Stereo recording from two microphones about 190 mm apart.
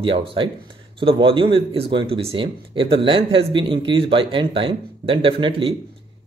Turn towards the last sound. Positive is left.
turn(degrees=-30)  # may be behind; listen again after turning